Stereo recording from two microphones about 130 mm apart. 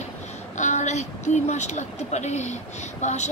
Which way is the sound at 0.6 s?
65° left (ahead or behind).